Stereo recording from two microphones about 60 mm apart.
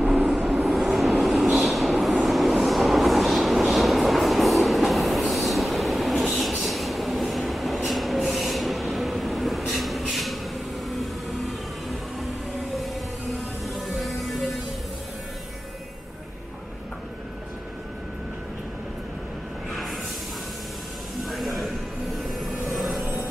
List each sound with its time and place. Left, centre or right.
0.0 s vehicle: centre
0.5 s vehicle: centre
1.2 s train: centre
10.9 s a sound: centre
12.7 s music: centre
19.7 s a sound: centre
21.2 s music: centre
22.3 s vehicle: centre